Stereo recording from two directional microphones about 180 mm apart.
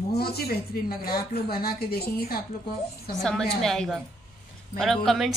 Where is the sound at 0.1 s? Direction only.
60° left (ahead or behind).